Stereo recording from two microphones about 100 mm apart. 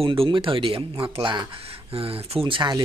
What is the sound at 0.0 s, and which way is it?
A man's voice, 60° right (ahead or behind).